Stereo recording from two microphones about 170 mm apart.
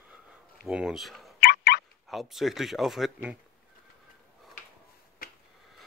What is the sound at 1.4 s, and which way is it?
Turkey, 65° left (ahead or behind).